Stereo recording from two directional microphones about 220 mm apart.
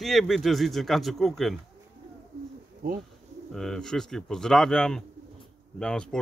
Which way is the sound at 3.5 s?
Centre (ahead or behind).